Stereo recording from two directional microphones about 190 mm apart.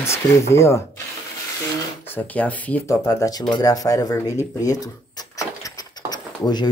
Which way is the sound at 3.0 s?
20° left (ahead or behind).